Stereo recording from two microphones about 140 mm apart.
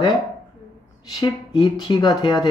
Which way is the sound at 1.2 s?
35° left (ahead or behind).